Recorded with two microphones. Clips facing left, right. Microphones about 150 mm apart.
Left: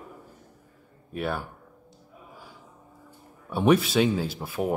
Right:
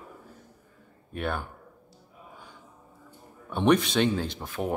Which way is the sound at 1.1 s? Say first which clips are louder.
Left 1 dB; 5° left (ahead or behind).